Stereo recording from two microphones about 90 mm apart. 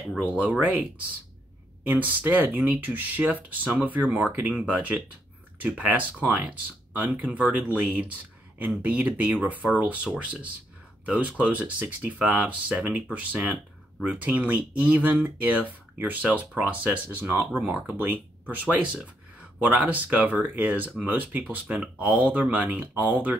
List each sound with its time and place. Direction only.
0.3 s speech: 15° right (ahead or behind)
1.9 s speech: 20° right (ahead or behind)